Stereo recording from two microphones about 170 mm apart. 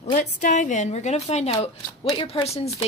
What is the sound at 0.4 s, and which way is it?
Speech, 45° left (ahead or behind).